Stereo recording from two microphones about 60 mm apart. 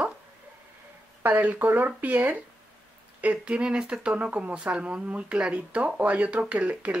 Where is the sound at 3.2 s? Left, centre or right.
Right.